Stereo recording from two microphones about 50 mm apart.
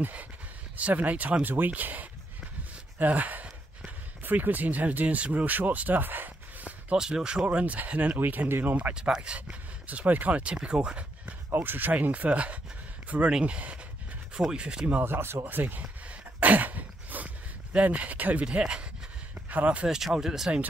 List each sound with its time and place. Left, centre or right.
0.7 s speech: right
1.4 s speech: right
7.0 s speech: centre; by 8.5 s right
8.5 s speech: right
8.9 s speech: centre
11.5 s speech: right
11.9 s speech: right
15.0 s speech: right
15.4 s a sound: right
17.8 s speech: right
18.4 s speech: centre
20.2 s speech: centre